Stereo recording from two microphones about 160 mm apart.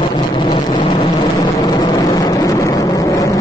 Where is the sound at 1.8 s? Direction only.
25° left (ahead or behind).